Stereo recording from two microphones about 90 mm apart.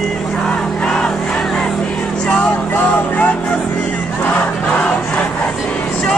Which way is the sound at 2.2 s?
10° left (ahead or behind).